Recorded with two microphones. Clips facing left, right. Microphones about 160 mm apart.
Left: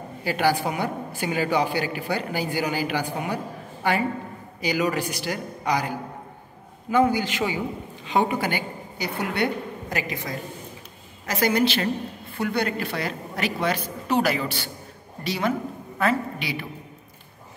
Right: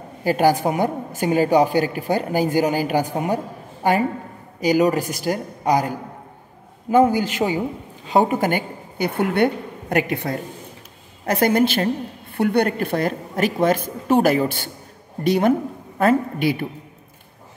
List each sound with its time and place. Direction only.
0.2 s a woman's voice: 45° right (ahead or behind)